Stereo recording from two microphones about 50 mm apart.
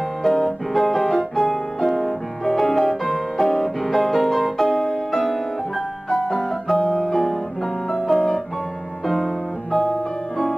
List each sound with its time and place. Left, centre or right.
0.2 s music: centre
6.0 s piano: centre
6.9 s music: centre
7.9 s piano: centre
9.0 s music: centre